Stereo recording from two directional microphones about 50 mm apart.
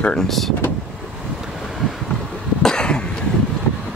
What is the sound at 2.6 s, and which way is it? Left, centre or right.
Cough, centre.